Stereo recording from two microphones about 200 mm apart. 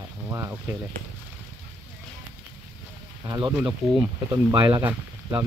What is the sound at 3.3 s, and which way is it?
Speech, 20° right (ahead or behind).